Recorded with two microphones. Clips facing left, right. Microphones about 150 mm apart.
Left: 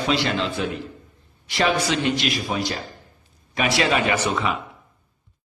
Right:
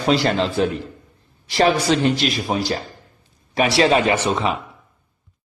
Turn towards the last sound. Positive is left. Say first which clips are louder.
# right 3 dB
turn(degrees=-30)  # may be behind; listen again after turning